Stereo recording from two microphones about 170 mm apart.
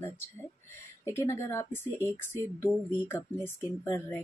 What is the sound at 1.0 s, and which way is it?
Speech, 15° left (ahead or behind).